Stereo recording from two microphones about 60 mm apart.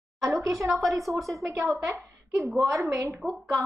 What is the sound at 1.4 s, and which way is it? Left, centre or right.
A woman's voice, right.